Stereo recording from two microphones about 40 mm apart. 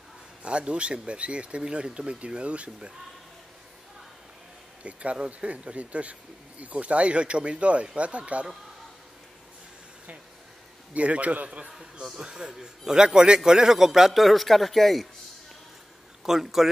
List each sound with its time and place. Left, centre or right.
0.4 s speech: right
5.1 s speech: right
10.9 s speech: right
12.0 s a man's voice: centre
14.1 s speech: centre
16.2 s a man's voice: centre